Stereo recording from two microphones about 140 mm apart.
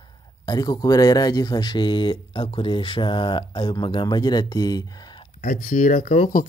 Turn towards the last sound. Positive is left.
turn(degrees=65)  # may be behind; listen again after turning